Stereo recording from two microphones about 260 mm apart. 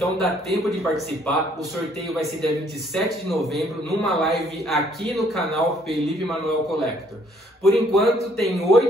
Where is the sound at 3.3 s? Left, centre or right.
Centre.